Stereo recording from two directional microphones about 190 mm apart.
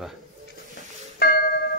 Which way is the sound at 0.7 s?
55° left (ahead or behind).